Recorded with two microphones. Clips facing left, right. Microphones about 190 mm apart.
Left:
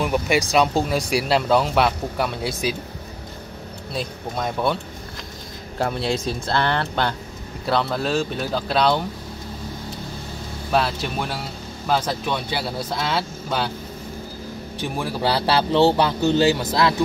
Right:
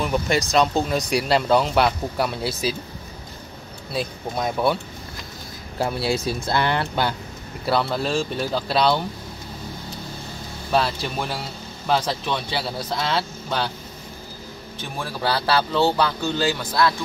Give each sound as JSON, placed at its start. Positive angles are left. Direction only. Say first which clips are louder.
{"t": 0.0, "sound": "speech", "louder": "left 1 dB", "side_deg": 10}
{"t": 3.9, "sound": "speech", "louder": "right 2 dB", "side_deg": -5}
{"t": 5.8, "sound": "speech", "louder": "even", "side_deg": -5}
{"t": 10.7, "sound": "speech", "louder": "even", "side_deg": 0}
{"t": 14.8, "sound": "a man's voice", "louder": "left 4 dB", "side_deg": 15}